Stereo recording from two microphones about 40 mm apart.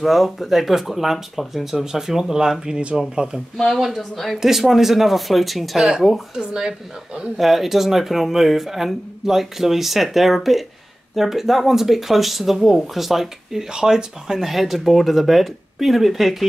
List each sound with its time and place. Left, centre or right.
0.0 s speech: centre
3.2 s speech: right
3.6 s speech: centre
5.8 s speech: centre
7.2 s speech: centre